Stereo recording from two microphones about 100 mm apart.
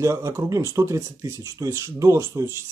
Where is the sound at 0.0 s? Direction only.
30° right (ahead or behind).